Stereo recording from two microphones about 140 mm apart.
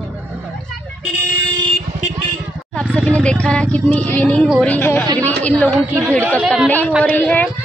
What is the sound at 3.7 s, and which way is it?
Speech, 10° left (ahead or behind).